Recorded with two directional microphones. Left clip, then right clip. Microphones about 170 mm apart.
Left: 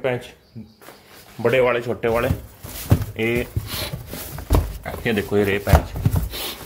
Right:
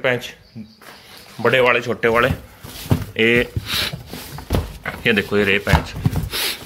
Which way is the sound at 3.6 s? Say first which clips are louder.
Right 7 dB; 10° left (ahead or behind).